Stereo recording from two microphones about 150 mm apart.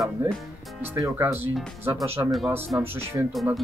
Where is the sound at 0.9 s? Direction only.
20° right (ahead or behind).